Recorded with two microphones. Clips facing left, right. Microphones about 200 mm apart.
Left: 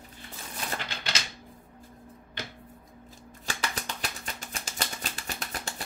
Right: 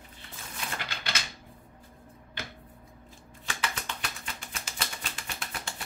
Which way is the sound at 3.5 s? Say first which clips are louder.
Left 1 dB; 35° left (ahead or behind).